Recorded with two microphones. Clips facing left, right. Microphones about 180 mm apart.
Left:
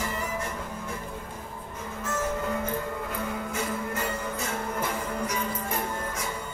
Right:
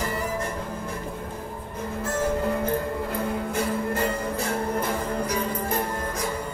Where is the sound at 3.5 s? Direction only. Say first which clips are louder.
Right 6 dB; 35° right (ahead or behind).